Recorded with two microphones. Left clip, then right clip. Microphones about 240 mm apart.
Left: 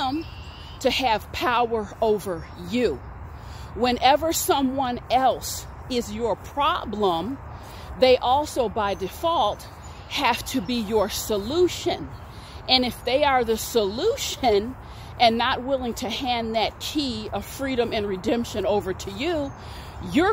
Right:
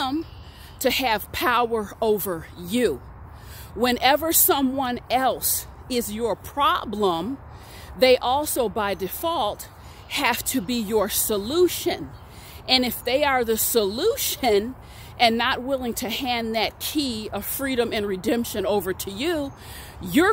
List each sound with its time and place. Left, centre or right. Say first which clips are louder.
0.8 s a woman's voice: even; right